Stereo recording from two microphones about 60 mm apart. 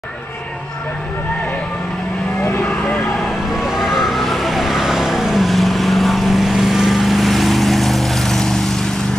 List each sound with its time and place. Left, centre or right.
3.2 s vehicle: centre